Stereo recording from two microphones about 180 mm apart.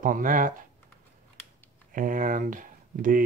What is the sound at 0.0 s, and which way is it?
Speech, 50° right (ahead or behind).